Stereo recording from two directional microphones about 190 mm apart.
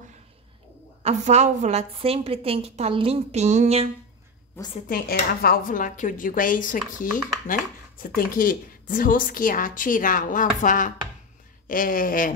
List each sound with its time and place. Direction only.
1.0 s a woman's voice: 35° right (ahead or behind)
4.8 s a woman's voice: 50° left (ahead or behind)